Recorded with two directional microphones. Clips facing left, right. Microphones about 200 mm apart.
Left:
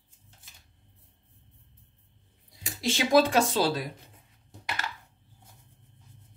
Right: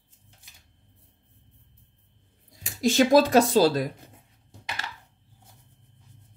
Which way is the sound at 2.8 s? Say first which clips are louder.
Right 4 dB; 40° right (ahead or behind).